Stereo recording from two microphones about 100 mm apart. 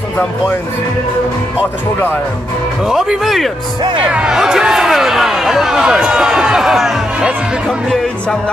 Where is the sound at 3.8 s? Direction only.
55° right (ahead or behind).